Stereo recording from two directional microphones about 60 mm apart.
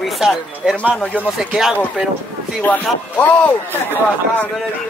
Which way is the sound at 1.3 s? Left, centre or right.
Centre.